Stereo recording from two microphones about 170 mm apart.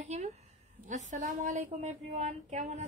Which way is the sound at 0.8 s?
45° right (ahead or behind).